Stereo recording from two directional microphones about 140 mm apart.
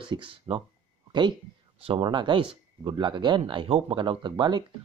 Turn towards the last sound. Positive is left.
turn(degrees=-30)  # may be behind; listen again after turning